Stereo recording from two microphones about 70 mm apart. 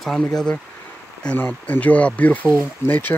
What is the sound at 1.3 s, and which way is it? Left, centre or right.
Speech, left.